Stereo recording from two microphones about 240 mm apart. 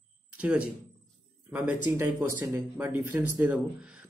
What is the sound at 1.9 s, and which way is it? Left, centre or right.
Speech, centre.